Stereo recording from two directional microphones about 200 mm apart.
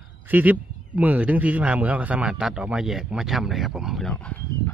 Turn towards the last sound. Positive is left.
turn(degrees=5)  # may be behind; listen again after turning